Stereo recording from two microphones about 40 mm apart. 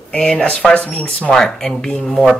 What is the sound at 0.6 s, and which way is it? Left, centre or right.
Speech, centre.